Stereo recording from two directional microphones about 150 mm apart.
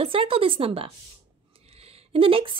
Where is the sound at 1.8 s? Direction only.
40° right (ahead or behind).